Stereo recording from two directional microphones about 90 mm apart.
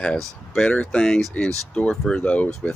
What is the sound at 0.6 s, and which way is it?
Speech, 10° left (ahead or behind).